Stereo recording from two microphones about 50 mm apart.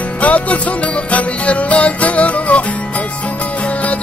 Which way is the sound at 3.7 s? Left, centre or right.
Left.